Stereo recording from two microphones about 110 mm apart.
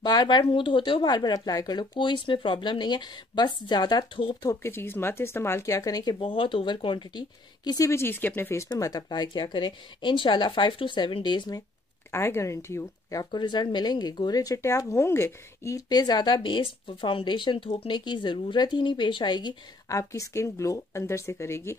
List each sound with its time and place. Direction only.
0.0 s speech: 40° left (ahead or behind)
4.6 s speech: 20° left (ahead or behind)
8.6 s speech: 35° left (ahead or behind)
12.1 s speech: 25° left (ahead or behind); by 19.5 s 45° left (ahead or behind)
19.9 s speech: 30° left (ahead or behind)